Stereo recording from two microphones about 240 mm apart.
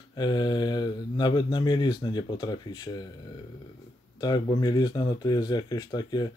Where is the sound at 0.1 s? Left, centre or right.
Centre.